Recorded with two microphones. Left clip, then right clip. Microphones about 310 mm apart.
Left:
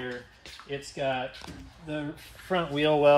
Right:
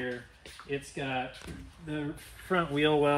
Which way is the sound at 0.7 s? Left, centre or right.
Centre.